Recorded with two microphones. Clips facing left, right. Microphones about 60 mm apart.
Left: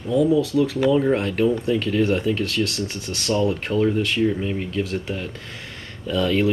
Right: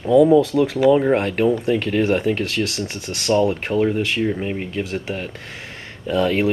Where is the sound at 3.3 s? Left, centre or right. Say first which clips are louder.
Right 3 dB; right.